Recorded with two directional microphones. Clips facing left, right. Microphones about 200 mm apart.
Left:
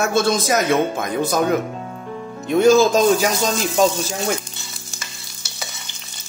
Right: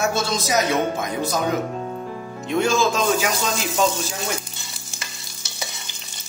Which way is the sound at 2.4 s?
40° left (ahead or behind).